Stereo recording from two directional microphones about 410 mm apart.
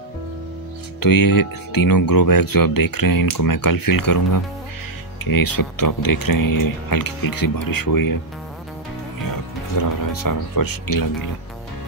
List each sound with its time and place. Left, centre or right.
1.0 s speech: left
9.8 s speech: left